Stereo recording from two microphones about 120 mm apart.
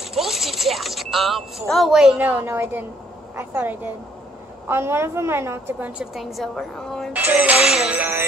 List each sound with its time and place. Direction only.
0.0 s speech: centre (ahead or behind)
2.1 s music: 15° right (ahead or behind)
4.6 s a woman's voice: 20° right (ahead or behind)
6.1 s a woman's voice: centre (ahead or behind)
7.1 s music: 15° right (ahead or behind)